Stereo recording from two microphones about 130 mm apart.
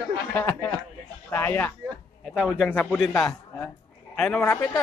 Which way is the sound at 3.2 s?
10° left (ahead or behind).